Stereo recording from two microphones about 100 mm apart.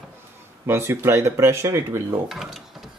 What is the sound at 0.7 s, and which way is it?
Speech, 25° right (ahead or behind).